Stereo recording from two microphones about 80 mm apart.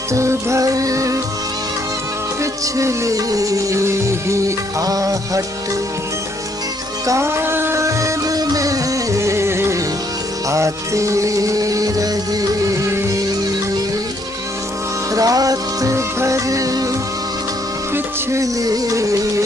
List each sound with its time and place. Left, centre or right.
0.1 s music: right
2.6 s music: right
7.1 s music: right
15.1 s music: right
18.4 s music: right